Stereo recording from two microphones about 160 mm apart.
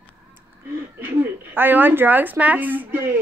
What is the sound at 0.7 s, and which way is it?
A woman's voice, 10° right (ahead or behind).